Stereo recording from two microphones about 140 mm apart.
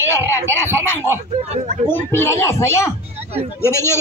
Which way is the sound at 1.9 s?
15° left (ahead or behind).